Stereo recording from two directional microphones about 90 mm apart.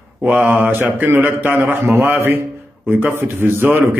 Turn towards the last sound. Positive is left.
turn(degrees=-20)  # may be behind; listen again after turning